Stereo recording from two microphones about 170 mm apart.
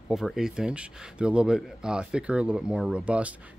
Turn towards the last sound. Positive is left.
turn(degrees=-5)  # may be behind; listen again after turning